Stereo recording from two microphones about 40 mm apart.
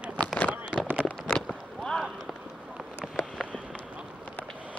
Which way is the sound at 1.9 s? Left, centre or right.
Centre.